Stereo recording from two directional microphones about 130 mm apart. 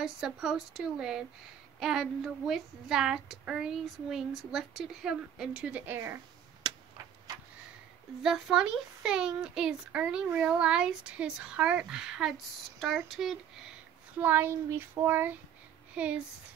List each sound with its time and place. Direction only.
0.0 s speech: 5° right (ahead or behind)
6.6 s a sound: 30° right (ahead or behind)
8.2 s speech: 5° right (ahead or behind)
14.2 s speech: 15° right (ahead or behind)